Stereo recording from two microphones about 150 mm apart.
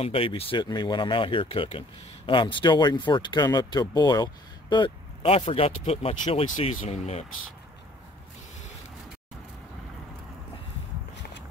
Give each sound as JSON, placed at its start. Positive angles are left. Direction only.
{"t": 0.0, "sound": "speech", "side_deg": 40}